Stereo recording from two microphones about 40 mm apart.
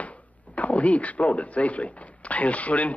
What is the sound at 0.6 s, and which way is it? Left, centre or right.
A man's voice, left.